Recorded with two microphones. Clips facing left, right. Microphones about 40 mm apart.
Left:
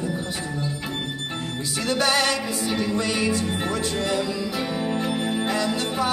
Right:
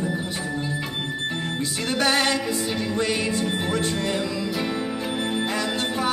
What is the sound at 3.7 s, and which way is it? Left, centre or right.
Music, right.